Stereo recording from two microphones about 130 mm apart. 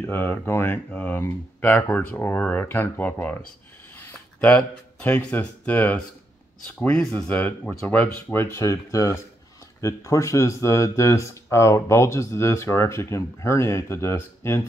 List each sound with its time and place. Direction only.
0.0 s speech: 15° left (ahead or behind)